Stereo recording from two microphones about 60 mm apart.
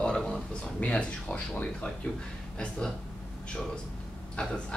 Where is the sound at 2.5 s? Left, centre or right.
Centre.